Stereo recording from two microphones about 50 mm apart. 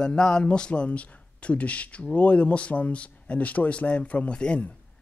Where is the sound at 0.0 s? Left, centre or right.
Centre.